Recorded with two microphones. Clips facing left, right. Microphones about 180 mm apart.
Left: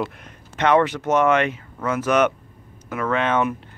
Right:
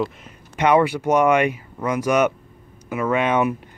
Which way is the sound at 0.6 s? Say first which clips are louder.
Right 1 dB; 10° right (ahead or behind).